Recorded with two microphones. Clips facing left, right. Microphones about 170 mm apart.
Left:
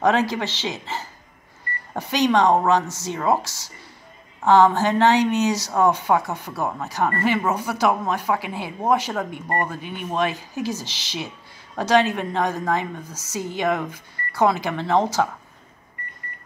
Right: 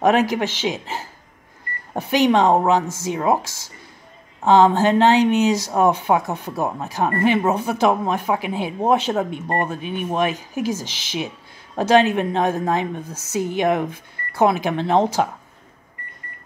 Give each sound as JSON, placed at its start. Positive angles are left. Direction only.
{"t": 0.0, "sound": "a woman's voice", "side_deg": -15}